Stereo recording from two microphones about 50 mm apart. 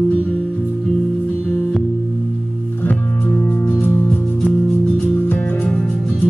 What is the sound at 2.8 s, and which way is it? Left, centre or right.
Music, left.